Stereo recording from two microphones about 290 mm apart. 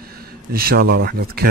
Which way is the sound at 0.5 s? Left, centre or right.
Right.